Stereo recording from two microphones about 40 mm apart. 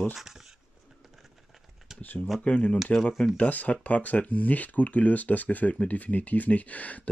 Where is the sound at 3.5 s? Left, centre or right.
Left.